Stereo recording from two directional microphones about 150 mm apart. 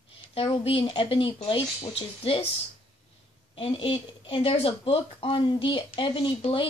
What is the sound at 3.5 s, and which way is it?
Speech, 35° left (ahead or behind).